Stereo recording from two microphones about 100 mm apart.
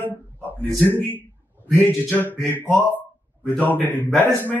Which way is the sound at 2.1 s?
20° left (ahead or behind).